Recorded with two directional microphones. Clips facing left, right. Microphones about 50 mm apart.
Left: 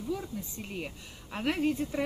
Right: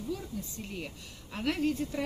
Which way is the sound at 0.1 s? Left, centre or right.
Centre.